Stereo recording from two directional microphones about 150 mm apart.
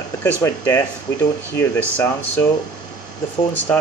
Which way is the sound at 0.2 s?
10° left (ahead or behind).